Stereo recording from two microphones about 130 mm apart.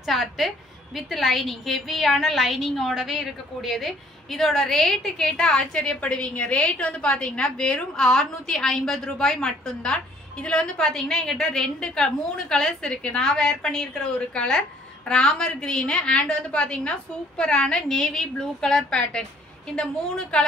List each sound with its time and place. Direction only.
0.0 s a woman's voice: centre (ahead or behind)